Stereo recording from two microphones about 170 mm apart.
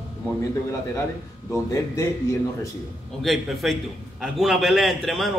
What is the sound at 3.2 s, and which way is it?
A man's voice, centre (ahead or behind).